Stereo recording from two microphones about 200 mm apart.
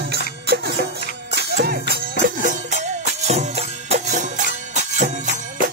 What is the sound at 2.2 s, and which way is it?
Music, 45° right (ahead or behind).